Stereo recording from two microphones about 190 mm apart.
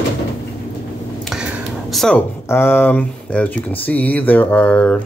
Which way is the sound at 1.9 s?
5° left (ahead or behind).